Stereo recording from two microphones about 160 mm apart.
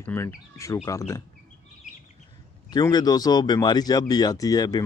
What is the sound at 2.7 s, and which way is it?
Speech, 25° left (ahead or behind).